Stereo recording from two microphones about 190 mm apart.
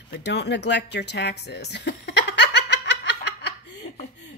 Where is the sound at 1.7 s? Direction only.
60° left (ahead or behind).